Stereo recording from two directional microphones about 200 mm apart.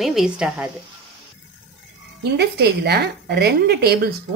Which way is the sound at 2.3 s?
55° right (ahead or behind).